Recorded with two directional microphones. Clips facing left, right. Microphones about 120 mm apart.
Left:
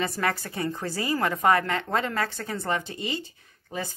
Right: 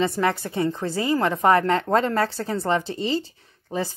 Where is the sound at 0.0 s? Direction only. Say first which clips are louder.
Right 5 dB; 25° right (ahead or behind).